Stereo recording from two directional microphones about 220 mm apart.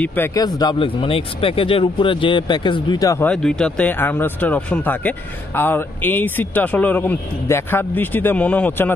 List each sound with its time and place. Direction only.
0.0 s speech: 10° left (ahead or behind)